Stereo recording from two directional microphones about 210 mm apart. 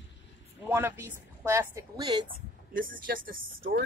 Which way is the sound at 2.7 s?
40° right (ahead or behind).